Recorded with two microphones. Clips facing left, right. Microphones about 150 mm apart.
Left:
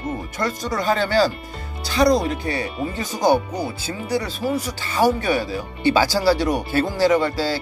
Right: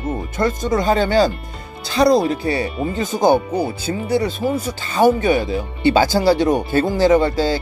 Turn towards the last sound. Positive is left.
turn(degrees=-20)  # may be behind; listen again after turning